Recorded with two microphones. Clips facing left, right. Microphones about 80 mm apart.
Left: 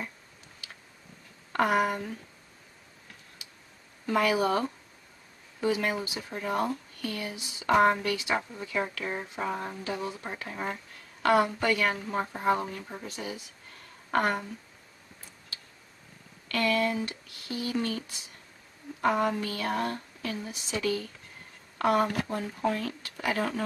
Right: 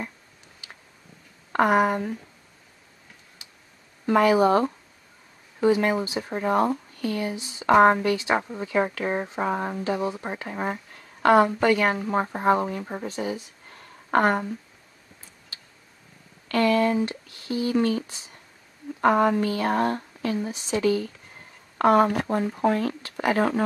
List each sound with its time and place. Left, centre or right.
1.5 s speech: right
4.0 s speech: right
9.9 s speech: right
16.4 s speech: right
18.9 s a woman's voice: right
19.3 s speech: right